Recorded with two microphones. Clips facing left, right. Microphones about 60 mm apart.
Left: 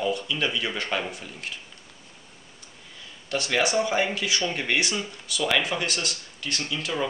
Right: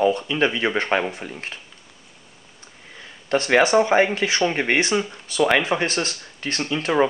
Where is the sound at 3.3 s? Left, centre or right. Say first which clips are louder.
Right 8 dB; right.